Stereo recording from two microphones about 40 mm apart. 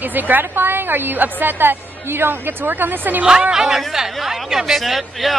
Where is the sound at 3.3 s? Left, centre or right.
Centre.